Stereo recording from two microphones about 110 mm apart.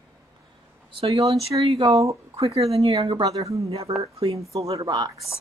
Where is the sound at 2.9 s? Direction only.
40° right (ahead or behind).